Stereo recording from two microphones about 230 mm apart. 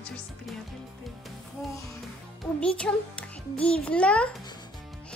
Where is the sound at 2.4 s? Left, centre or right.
Centre.